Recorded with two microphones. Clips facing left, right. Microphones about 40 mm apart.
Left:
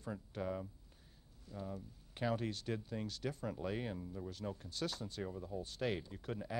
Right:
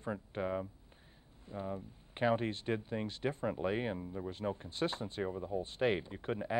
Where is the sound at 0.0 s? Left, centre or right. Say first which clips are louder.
Right 5 dB; right.